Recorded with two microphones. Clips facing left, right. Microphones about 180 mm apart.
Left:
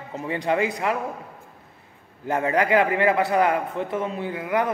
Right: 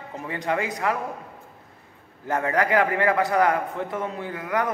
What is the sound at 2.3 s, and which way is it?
A man's voice, 25° left (ahead or behind).